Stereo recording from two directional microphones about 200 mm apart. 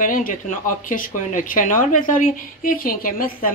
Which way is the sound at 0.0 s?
45° left (ahead or behind).